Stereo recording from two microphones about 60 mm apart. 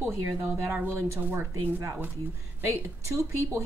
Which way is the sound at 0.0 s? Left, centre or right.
Right.